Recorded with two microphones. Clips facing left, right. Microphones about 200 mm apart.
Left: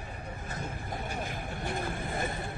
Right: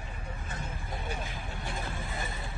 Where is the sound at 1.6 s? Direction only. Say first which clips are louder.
Left 5 dB; 55° left (ahead or behind).